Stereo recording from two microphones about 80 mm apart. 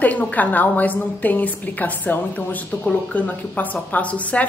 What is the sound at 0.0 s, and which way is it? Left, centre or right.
A woman's voice, centre.